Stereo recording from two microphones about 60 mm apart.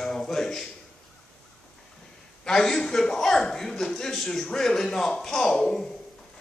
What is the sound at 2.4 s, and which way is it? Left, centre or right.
Speech, centre.